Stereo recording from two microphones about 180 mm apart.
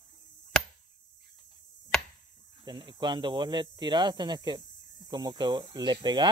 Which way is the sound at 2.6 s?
25° right (ahead or behind).